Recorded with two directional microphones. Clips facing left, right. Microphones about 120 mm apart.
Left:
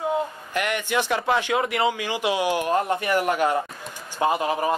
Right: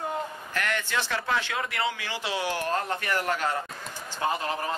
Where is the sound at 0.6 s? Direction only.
15° left (ahead or behind).